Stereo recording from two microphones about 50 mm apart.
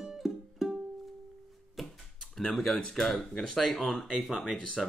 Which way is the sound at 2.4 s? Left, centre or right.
Centre.